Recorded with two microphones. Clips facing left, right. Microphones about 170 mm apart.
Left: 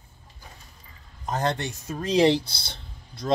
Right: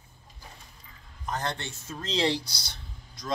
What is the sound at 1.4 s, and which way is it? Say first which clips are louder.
Speech: left 7 dB; 15° left (ahead or behind).